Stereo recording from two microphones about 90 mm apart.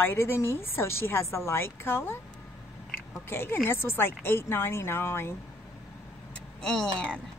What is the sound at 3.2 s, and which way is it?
Speech, 25° left (ahead or behind).